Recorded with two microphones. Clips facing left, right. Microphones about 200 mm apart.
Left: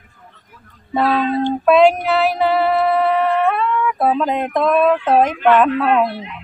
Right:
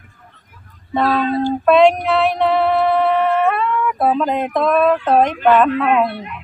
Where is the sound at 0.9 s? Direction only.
5° left (ahead or behind).